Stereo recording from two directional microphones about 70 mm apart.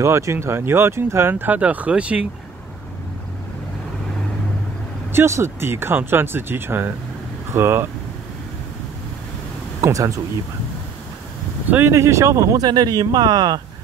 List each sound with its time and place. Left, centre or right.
0.0 s speech: right
1.3 s speech: right
5.1 s speech: right
9.8 s speech: right
11.9 s speech: right
12.5 s speech: right